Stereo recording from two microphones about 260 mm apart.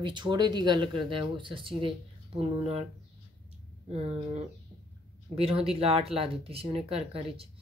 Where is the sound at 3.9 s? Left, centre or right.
Right.